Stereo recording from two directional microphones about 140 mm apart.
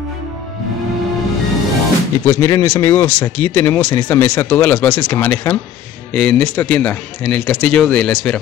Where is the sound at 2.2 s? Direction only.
20° left (ahead or behind).